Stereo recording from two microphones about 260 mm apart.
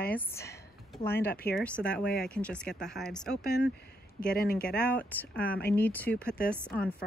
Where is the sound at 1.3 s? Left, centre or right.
Left.